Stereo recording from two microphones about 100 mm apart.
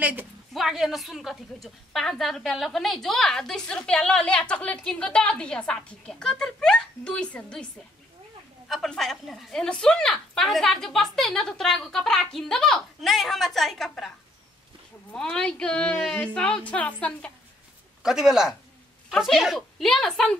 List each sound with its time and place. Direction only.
0.0 s a woman's voice: 20° right (ahead or behind)
0.5 s a woman's voice: 5° right (ahead or behind)
8.6 s a woman's voice: centre (ahead or behind)
15.1 s a woman's voice: 5° left (ahead or behind)
18.0 s a woman's voice: 5° right (ahead or behind)